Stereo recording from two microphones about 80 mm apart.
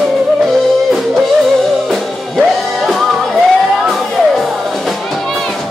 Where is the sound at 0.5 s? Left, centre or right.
Centre.